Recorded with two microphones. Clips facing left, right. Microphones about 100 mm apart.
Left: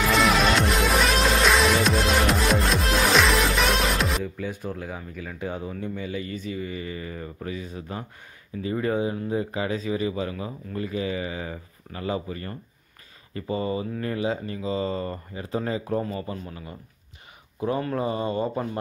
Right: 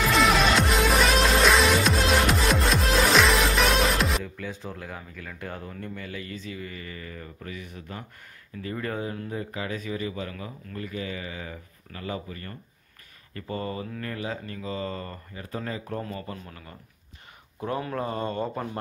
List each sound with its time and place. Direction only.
0.1 s music: centre (ahead or behind)
5.4 s speech: 10° left (ahead or behind)
6.7 s speech: 20° left (ahead or behind)
8.6 s speech: 15° left (ahead or behind)
9.3 s speech: 25° left (ahead or behind)
13.3 s speech: 10° left (ahead or behind)
16.0 s speech: 10° left (ahead or behind)